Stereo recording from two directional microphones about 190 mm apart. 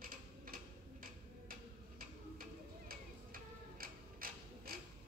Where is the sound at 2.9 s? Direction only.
50° right (ahead or behind).